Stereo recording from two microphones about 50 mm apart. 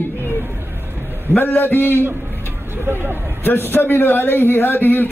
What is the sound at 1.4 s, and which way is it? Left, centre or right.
Speech, left.